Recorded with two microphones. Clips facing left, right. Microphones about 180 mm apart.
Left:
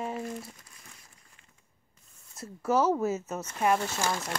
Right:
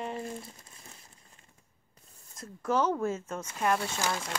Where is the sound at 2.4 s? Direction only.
5° left (ahead or behind).